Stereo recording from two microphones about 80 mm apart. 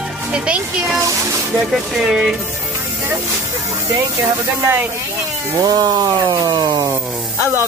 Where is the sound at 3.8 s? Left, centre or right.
Right.